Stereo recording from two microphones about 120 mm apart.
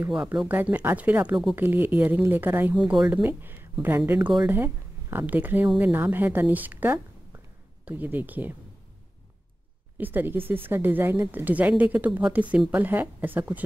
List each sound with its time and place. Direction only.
0.0 s a woman's voice: 10° right (ahead or behind)
9.9 s a woman's voice: 15° right (ahead or behind)